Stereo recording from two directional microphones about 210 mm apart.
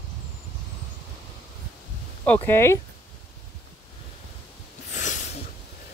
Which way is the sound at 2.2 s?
10° left (ahead or behind).